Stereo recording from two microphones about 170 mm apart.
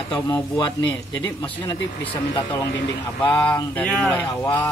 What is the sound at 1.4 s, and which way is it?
Speech, 30° left (ahead or behind).